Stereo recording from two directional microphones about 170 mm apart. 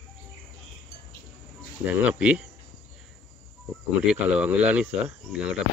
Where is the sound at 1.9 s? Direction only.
10° right (ahead or behind).